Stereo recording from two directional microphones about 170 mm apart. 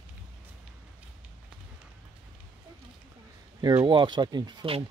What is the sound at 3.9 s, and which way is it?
Speech, 30° right (ahead or behind).